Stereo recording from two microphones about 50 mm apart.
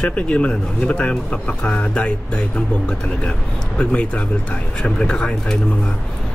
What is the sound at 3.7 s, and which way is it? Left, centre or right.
A man's voice, left.